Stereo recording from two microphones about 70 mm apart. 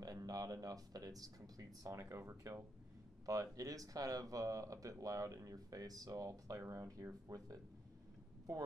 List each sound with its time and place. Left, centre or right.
0.0 s speech: right
2.0 s speech: right
3.3 s speech: right